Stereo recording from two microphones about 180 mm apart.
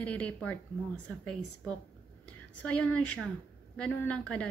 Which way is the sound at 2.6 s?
5° left (ahead or behind).